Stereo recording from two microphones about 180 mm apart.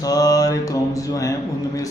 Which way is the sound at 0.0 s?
20° left (ahead or behind).